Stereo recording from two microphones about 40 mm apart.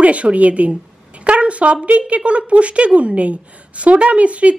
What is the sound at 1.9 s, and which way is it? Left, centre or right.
A woman's voice, right.